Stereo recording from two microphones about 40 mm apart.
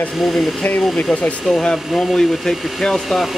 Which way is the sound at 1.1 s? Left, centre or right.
Left.